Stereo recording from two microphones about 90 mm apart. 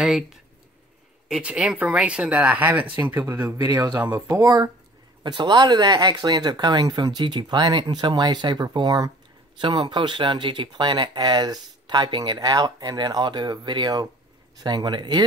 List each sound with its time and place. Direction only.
0.0 s speech: 5° right (ahead or behind)
1.4 s speech: 10° right (ahead or behind)
3.5 s speech: 45° right (ahead or behind)
5.2 s speech: 55° right (ahead or behind)
9.6 s speech: 60° right (ahead or behind)